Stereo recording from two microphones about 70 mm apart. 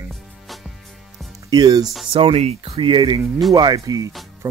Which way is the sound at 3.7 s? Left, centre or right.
Right.